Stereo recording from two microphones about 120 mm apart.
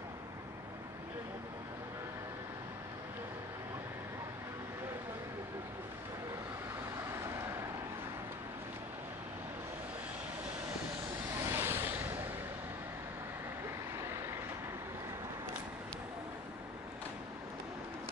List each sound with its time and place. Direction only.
11.4 s vehicle: 20° right (ahead or behind)